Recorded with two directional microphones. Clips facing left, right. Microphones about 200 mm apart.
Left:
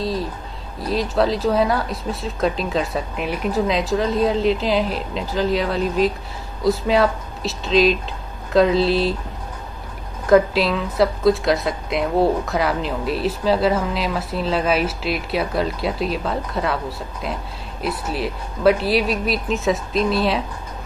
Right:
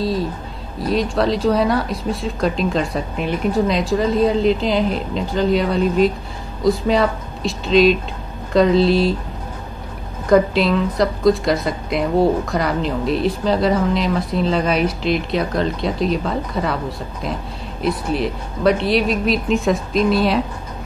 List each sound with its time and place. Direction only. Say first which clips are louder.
0.0 s a sound: right 3 dB; centre (ahead or behind)
0.7 s a woman's voice: right 1 dB; centre (ahead or behind)
10.2 s a woman's voice: right 1 dB; centre (ahead or behind)